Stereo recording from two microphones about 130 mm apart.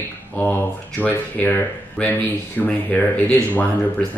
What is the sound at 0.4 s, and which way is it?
Speech, 15° left (ahead or behind).